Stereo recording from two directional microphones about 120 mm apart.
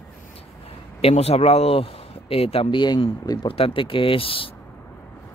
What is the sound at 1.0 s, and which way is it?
Speech, 60° left (ahead or behind).